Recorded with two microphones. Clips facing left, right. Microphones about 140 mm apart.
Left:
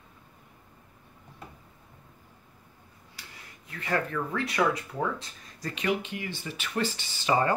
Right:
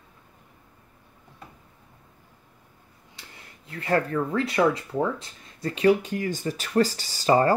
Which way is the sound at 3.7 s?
35° right (ahead or behind).